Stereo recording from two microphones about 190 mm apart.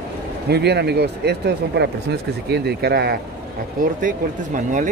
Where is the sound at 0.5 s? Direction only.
60° right (ahead or behind).